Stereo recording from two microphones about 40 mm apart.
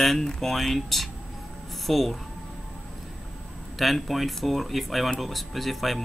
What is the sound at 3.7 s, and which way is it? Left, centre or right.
Speech, centre.